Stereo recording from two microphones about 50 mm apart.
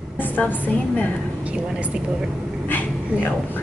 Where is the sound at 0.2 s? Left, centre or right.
Left.